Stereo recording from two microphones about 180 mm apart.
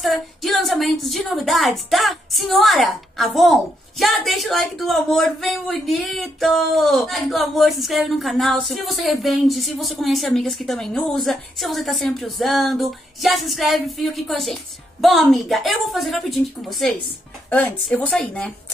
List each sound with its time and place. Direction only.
0.0 s speech: centre (ahead or behind)